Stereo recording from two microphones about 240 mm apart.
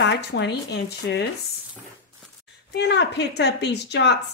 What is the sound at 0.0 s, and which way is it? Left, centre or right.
Speech, left.